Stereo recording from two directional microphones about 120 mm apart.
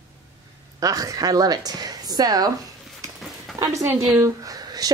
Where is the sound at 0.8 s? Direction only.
30° right (ahead or behind).